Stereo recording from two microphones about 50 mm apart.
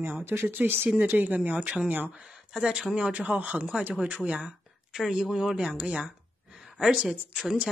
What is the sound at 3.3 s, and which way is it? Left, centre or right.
Speech, right.